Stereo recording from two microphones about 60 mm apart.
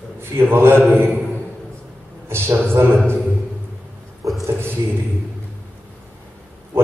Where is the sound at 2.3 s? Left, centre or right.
Right.